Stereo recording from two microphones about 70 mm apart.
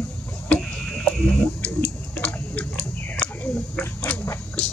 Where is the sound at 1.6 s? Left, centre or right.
Left.